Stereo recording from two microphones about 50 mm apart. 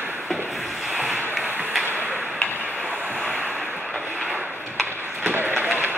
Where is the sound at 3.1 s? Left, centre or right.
Left.